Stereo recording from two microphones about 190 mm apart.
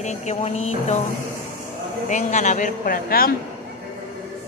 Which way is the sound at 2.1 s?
40° left (ahead or behind).